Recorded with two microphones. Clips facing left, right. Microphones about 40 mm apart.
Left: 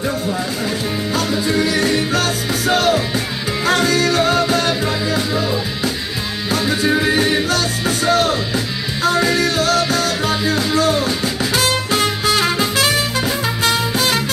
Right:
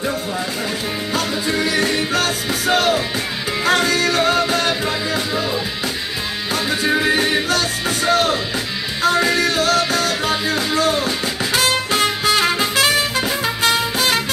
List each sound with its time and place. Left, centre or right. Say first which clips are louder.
1.1 s music: left 2 dB; right
6.5 s music: left 2 dB; right